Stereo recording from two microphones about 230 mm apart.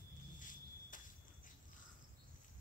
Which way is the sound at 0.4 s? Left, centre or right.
Left.